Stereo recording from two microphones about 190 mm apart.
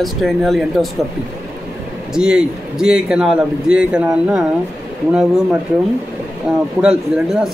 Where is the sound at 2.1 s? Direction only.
5° right (ahead or behind).